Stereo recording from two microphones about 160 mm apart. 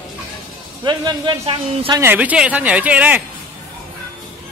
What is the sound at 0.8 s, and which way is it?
Speech, 30° right (ahead or behind).